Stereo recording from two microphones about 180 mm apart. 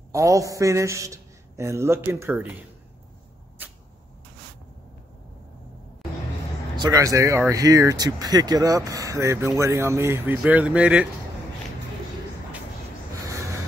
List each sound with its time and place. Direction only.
0.1 s speech: 15° right (ahead or behind)
6.8 s speech: 20° right (ahead or behind)
13.1 s a sound: 15° right (ahead or behind)